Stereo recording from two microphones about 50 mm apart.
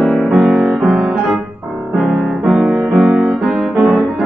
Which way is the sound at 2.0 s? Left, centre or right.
Right.